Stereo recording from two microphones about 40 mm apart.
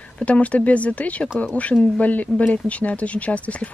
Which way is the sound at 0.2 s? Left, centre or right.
Left.